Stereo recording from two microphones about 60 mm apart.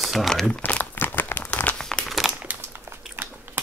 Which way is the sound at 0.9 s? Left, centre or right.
Left.